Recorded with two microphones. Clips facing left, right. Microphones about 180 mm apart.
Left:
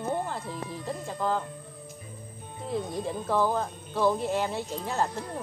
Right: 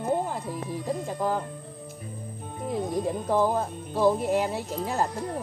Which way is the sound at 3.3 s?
15° right (ahead or behind).